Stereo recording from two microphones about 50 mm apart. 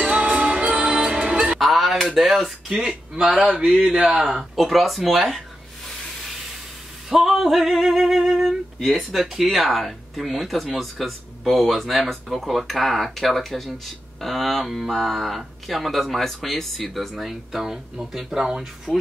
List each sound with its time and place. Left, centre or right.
0.0 s music: right
1.6 s a sound: centre
2.0 s speech: centre
2.7 s speech: centre
4.2 s speech: centre
7.1 s a sound: centre
8.5 s speech: centre